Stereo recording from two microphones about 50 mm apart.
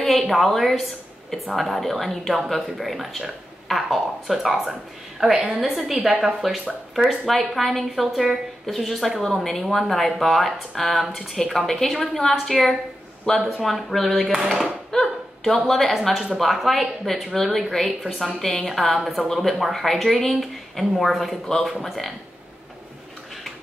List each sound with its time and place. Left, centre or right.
0.0 s a woman's voice: centre
5.3 s a woman's voice: centre
13.3 s speech: centre
13.6 s a woman's voice: centre
14.6 s a sound: centre
15.9 s a woman's voice: centre